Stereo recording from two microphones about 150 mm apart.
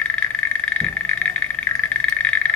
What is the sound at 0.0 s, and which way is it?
Frog, 10° left (ahead or behind).